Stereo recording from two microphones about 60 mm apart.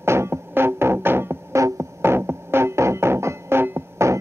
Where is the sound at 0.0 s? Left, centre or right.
Right.